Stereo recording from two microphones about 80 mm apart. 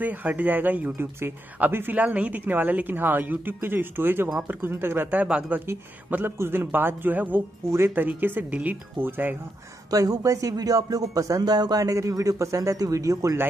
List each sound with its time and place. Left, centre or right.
0.0 s speech: right
5.2 s speech: centre
9.8 s speech: right